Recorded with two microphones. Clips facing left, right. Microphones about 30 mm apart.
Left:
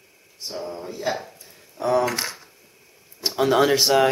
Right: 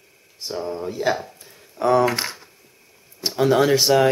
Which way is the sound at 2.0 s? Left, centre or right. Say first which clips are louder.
Right 3 dB; right.